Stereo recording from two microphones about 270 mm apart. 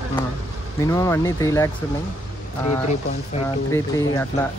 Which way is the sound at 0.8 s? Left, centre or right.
Centre.